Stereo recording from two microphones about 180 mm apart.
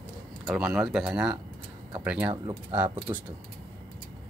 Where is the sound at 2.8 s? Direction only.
25° right (ahead or behind).